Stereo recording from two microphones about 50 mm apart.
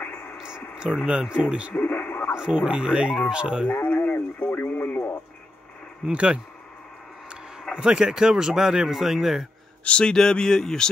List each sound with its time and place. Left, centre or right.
0.0 s a sound: left
0.8 s speech: centre
1.8 s speech: left
2.3 s speech: centre
3.8 s radio: left
4.6 s radio: left
6.0 s speech: right
7.7 s speech: centre
9.8 s speech: centre